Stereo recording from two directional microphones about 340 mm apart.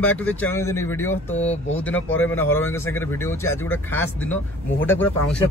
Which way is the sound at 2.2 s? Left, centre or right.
Centre.